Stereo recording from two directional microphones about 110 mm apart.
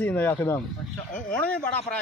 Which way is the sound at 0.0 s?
15° left (ahead or behind).